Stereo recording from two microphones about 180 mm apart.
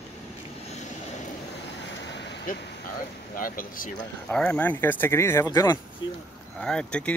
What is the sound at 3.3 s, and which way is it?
Speech, 50° left (ahead or behind).